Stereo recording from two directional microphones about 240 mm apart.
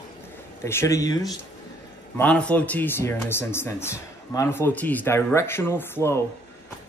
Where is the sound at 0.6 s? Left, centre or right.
Centre.